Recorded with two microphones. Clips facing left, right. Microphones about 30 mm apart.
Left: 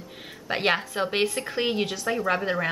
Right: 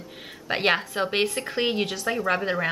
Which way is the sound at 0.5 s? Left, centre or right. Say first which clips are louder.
Right 1 dB; centre.